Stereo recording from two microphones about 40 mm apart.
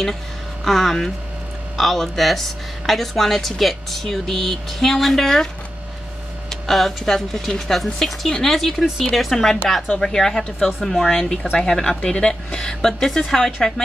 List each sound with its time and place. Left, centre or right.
0.7 s a woman's voice: centre
6.5 s a woman's voice: centre